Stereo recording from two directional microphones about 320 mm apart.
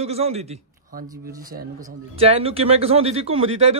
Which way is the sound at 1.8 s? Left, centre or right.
Centre.